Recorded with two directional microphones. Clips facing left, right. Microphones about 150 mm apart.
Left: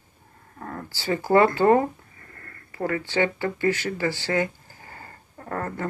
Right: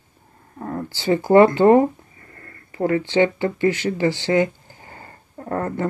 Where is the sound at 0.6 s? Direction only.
25° right (ahead or behind).